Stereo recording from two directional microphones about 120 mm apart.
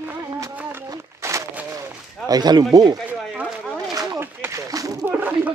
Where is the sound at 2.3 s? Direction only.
35° right (ahead or behind).